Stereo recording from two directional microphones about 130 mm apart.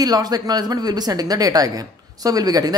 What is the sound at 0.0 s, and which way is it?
A woman's voice, 30° right (ahead or behind).